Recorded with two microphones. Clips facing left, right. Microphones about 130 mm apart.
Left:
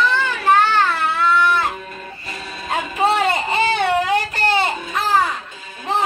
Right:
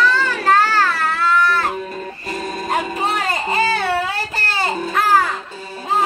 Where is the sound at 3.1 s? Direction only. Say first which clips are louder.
Left 1 dB; 25° left (ahead or behind).